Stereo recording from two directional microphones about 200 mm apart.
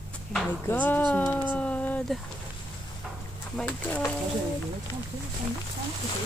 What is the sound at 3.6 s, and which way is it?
Speech, 5° left (ahead or behind).